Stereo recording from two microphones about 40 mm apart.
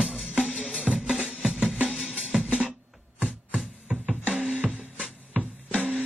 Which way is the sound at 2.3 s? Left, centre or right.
Right.